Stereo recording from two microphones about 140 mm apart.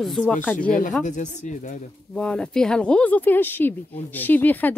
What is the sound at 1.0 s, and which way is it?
Speech, 60° left (ahead or behind).